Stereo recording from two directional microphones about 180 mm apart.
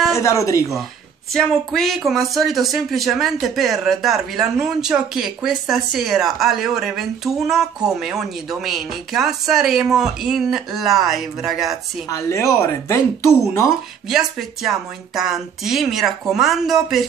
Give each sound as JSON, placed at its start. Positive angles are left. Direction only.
{"t": 0.1, "sound": "speech", "side_deg": 15}
{"t": 1.3, "sound": "speech", "side_deg": 0}
{"t": 12.1, "sound": "speech", "side_deg": 15}
{"t": 14.0, "sound": "speech", "side_deg": 0}